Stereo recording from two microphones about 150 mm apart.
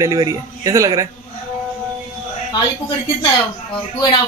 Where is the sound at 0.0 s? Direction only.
25° right (ahead or behind).